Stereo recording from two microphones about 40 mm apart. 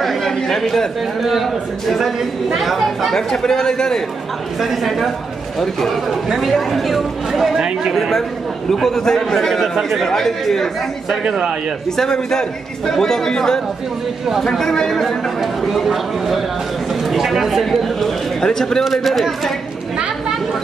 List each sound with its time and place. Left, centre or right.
0.0 s a man's voice: centre
3.2 s speech: centre
4.6 s speech: centre
7.5 s speech: centre
7.9 s speech: centre
11.2 s speech: centre
12.0 s speech: centre